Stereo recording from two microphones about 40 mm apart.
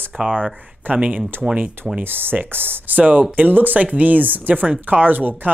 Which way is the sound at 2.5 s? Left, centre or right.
Right.